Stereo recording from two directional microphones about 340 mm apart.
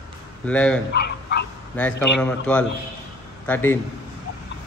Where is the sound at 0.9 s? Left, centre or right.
Left.